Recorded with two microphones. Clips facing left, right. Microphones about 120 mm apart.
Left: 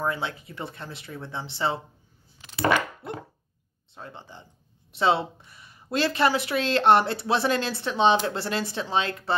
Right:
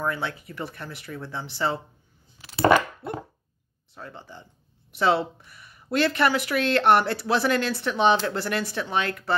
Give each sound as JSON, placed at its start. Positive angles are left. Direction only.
{"t": 0.0, "sound": "speech", "side_deg": 25}
{"t": 2.5, "sound": "a sound", "side_deg": -30}
{"t": 3.9, "sound": "speech", "side_deg": 25}